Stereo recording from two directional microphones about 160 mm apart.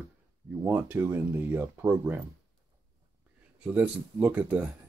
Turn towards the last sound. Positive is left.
turn(degrees=-10)  # may be behind; listen again after turning